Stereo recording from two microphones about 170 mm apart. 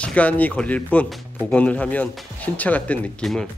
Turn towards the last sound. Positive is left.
turn(degrees=5)  # may be behind; listen again after turning